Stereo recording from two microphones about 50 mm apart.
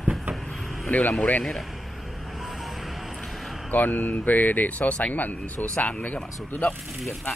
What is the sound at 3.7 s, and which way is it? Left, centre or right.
Speech, left.